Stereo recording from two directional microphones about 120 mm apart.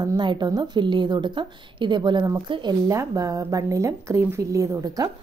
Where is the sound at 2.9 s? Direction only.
25° right (ahead or behind).